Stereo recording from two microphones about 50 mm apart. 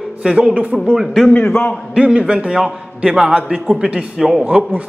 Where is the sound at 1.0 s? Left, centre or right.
Centre.